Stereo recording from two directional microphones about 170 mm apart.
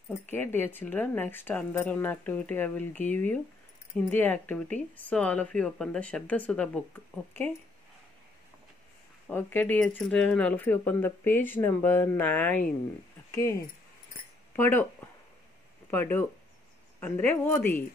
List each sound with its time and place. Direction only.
0.3 s speech: 10° left (ahead or behind)
9.3 s speech: 10° left (ahead or behind)
15.9 s speech: 10° left (ahead or behind)